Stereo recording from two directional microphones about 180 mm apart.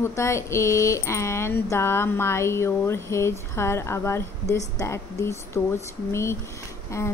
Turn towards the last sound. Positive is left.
turn(degrees=15)  # may be behind; listen again after turning